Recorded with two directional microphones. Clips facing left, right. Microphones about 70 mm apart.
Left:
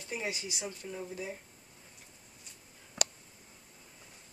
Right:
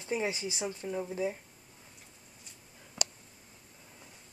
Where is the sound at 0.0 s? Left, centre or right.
Right.